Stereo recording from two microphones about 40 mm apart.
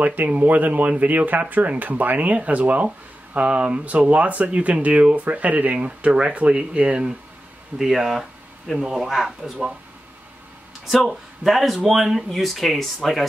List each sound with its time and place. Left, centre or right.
0.0 s speech: right
5.9 s speech: right
7.8 s speech: centre
11.1 s speech: centre